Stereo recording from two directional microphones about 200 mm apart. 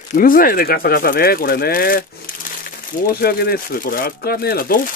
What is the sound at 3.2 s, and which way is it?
Speech, 50° left (ahead or behind).